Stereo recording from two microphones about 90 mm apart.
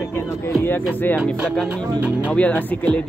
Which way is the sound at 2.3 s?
15° left (ahead or behind).